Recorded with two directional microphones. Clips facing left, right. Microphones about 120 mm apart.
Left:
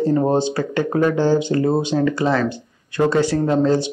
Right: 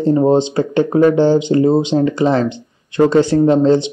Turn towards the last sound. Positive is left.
turn(degrees=-25)  # may be behind; listen again after turning